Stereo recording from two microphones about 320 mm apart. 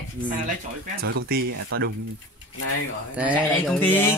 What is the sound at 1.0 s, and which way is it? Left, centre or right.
Speech, right.